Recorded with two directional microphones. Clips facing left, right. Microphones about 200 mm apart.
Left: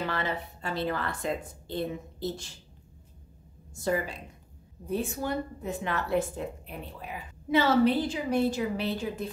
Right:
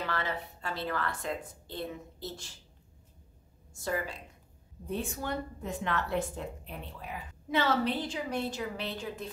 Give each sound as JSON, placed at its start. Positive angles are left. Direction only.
{"t": 0.0, "sound": "a woman's voice", "side_deg": 20}
{"t": 3.8, "sound": "a woman's voice", "side_deg": 20}
{"t": 4.9, "sound": "a woman's voice", "side_deg": 5}